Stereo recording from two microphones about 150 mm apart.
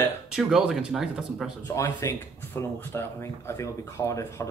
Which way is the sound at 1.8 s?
20° left (ahead or behind).